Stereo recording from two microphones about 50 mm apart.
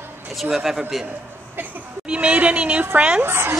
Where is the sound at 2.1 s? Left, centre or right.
Right.